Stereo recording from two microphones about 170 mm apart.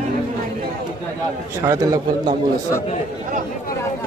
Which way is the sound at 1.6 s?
20° right (ahead or behind).